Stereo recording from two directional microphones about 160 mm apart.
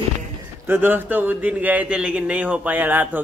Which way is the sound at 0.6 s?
15° right (ahead or behind).